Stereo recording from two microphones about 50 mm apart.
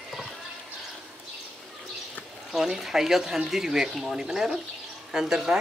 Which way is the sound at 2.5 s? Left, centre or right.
Centre.